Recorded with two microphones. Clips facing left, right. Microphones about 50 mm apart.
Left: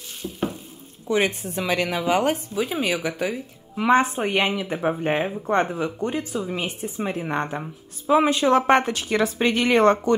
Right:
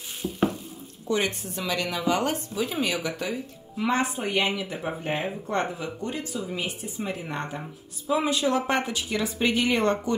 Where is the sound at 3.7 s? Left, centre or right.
Left.